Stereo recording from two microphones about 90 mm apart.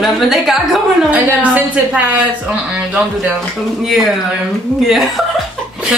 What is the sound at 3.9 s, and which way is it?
Speech, centre (ahead or behind).